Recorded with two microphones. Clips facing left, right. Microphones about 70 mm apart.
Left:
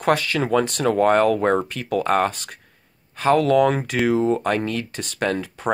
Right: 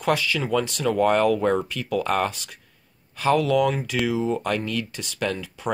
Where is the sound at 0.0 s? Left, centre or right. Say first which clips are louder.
Left 3 dB; left.